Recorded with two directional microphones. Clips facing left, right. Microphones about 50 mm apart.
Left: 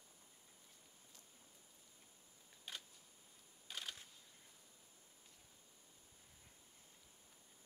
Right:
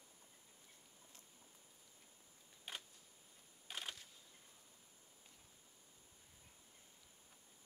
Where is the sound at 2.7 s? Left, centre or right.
Centre.